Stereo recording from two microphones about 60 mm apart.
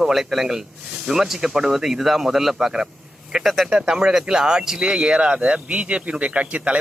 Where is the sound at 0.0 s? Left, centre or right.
Centre.